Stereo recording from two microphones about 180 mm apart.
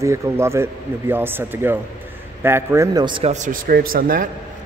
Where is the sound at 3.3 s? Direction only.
45° right (ahead or behind).